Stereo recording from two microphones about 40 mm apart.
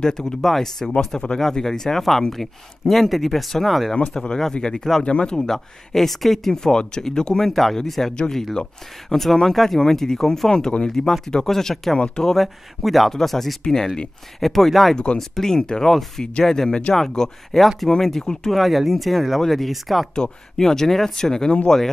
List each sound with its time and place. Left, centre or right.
0.0 s speech: centre
4.1 s speech: centre
5.5 s speech: centre
6.5 s speech: centre
8.1 s speech: left
9.1 s speech: centre
13.7 s speech: centre
14.4 s speech: centre
15.9 s speech: centre
17.6 s speech: centre
18.6 s speech: centre
20.2 s speech: centre